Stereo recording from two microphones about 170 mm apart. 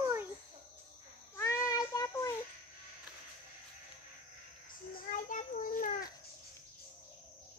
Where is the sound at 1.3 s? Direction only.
15° left (ahead or behind).